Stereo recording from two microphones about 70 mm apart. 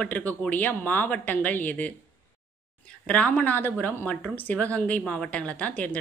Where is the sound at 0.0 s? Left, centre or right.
Left.